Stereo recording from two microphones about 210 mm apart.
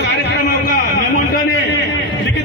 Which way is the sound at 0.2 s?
50° left (ahead or behind).